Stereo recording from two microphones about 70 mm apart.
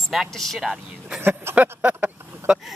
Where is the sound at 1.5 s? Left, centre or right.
Right.